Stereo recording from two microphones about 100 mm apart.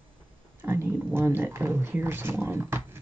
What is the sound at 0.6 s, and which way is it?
Speech, 25° right (ahead or behind).